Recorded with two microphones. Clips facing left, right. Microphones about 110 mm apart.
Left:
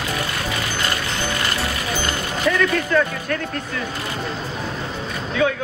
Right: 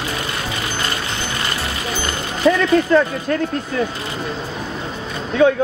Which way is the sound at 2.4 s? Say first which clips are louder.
Right 6 dB; 25° right (ahead or behind).